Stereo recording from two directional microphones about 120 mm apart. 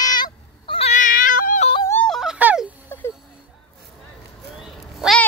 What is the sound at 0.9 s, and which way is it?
Cat, 90° left.